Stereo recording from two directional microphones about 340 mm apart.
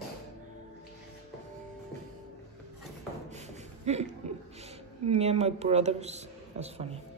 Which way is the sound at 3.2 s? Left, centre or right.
Centre.